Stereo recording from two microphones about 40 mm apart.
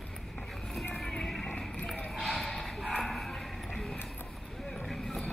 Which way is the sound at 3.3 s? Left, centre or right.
Centre.